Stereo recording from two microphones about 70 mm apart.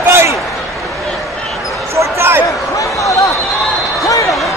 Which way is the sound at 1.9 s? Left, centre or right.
Right.